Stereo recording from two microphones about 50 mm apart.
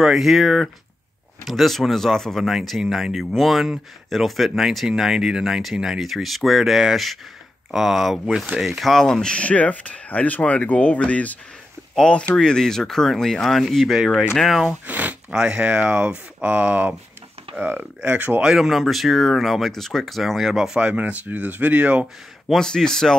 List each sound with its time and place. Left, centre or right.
0.0 s speech: centre
2.9 s speech: centre
8.9 s speech: centre
14.7 s speech: right
15.3 s speech: right
17.6 s speech: right
18.4 s speech: centre
20.9 s speech: right
22.5 s speech: centre